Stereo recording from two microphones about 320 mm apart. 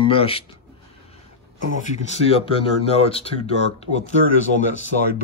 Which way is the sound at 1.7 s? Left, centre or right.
Centre.